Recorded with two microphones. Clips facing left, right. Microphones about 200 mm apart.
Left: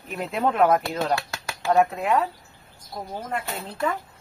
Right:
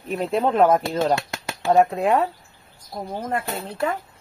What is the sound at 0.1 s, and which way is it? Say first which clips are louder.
Speech: right 4 dB; 30° right (ahead or behind).